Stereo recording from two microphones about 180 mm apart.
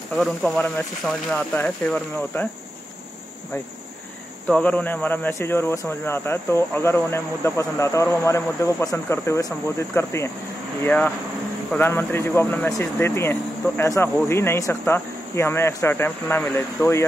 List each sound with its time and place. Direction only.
0.1 s speech: centre (ahead or behind)
4.5 s speech: 5° left (ahead or behind)